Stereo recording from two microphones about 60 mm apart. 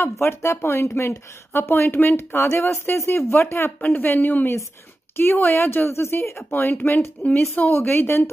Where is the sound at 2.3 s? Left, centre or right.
Left.